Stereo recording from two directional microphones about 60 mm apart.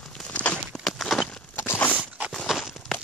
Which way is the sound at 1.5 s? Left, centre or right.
Left.